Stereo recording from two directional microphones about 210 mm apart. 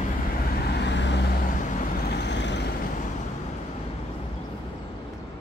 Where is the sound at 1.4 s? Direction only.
40° left (ahead or behind).